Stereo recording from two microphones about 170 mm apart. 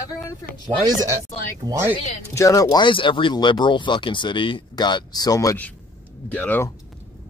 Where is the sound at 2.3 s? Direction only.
20° left (ahead or behind).